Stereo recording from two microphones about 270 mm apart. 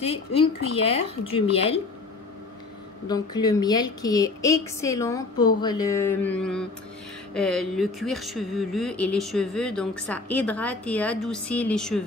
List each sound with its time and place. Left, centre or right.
0.0 s speech: left
3.1 s a woman's voice: centre